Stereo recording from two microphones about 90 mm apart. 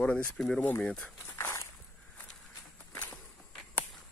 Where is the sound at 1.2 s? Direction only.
30° left (ahead or behind).